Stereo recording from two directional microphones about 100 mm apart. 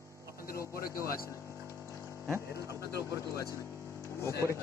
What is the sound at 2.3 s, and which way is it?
Speech, 30° right (ahead or behind).